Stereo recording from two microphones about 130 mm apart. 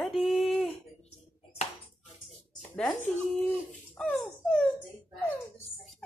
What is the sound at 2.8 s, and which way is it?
Speech, 10° left (ahead or behind).